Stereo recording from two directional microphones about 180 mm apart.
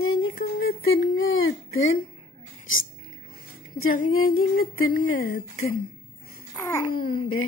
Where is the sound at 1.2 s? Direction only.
90° left.